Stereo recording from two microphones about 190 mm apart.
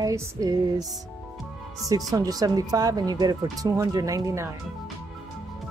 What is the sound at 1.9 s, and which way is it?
Speech, 20° right (ahead or behind).